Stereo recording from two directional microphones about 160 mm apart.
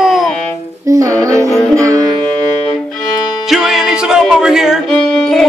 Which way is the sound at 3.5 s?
5° right (ahead or behind).